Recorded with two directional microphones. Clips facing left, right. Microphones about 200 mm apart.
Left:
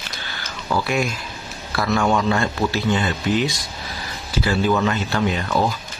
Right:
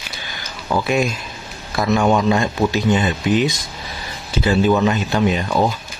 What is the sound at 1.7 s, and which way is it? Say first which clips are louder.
Speech: right 3 dB; 20° right (ahead or behind).